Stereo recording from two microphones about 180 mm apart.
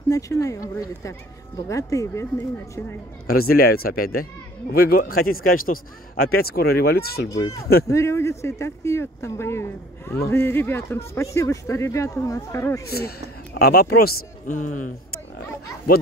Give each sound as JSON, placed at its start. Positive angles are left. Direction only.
{"t": 0.1, "sound": "speech", "side_deg": 20}
{"t": 3.3, "sound": "speech", "side_deg": 55}
{"t": 7.9, "sound": "speech", "side_deg": 15}
{"t": 12.8, "sound": "speech", "side_deg": 60}